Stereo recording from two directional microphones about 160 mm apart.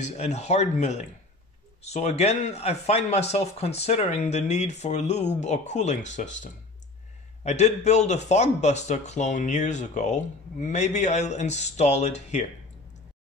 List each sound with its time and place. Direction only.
0.0 s speech: 45° left (ahead or behind)